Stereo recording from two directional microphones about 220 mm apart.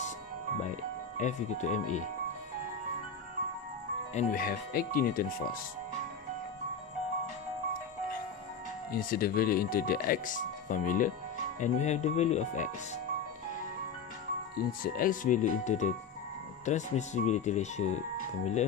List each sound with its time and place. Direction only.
1.1 s speech: 35° left (ahead or behind)
4.1 s speech: 35° left (ahead or behind)
8.9 s speech: 45° left (ahead or behind)
14.8 s speech: 40° left (ahead or behind)